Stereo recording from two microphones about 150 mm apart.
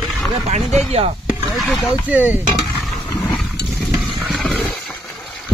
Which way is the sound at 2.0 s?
10° right (ahead or behind).